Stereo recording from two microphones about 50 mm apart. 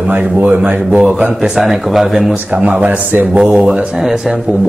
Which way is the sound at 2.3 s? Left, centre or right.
Centre.